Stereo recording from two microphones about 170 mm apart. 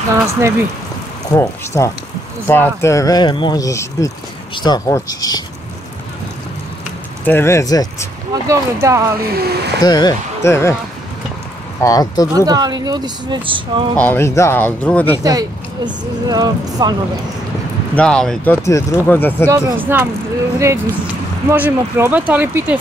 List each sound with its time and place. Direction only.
0.1 s speech: 15° right (ahead or behind)
1.3 s speech: 20° left (ahead or behind)
7.2 s speech: 15° left (ahead or behind)
8.5 s speech: 20° right (ahead or behind)
9.8 s speech: 25° left (ahead or behind)
11.8 s speech: 20° left (ahead or behind)
12.4 s speech: 20° right (ahead or behind)
13.9 s speech: 10° left (ahead or behind)
15.2 s speech: 20° right (ahead or behind)
17.9 s speech: 5° left (ahead or behind)
19.5 s speech: 10° right (ahead or behind)